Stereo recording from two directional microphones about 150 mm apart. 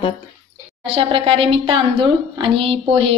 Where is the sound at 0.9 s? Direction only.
35° right (ahead or behind).